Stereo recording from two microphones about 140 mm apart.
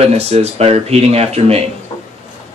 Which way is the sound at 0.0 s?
50° right (ahead or behind).